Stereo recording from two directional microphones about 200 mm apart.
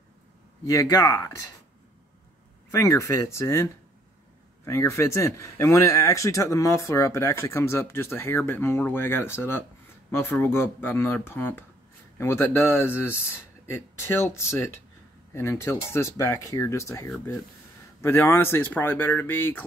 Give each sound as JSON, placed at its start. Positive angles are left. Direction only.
{"t": 0.7, "sound": "speech", "side_deg": 15}
{"t": 2.7, "sound": "speech", "side_deg": 15}